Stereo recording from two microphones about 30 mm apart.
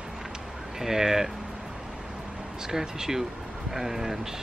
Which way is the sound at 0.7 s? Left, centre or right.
Centre.